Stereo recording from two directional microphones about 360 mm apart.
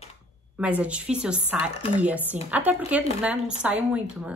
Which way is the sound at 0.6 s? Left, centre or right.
Centre.